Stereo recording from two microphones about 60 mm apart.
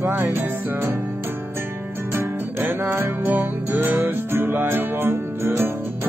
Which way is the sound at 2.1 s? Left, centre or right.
Right.